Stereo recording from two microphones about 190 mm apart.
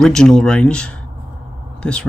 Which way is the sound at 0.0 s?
5° left (ahead or behind).